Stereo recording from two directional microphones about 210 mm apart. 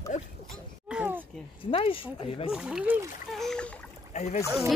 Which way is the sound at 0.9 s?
5° right (ahead or behind).